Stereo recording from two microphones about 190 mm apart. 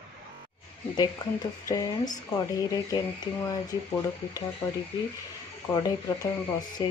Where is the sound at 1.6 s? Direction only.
20° left (ahead or behind).